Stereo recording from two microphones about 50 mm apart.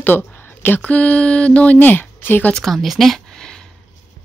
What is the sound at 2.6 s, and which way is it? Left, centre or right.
Speech, centre.